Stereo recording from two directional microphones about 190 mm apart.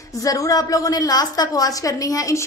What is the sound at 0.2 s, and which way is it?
A woman's voice, 20° left (ahead or behind).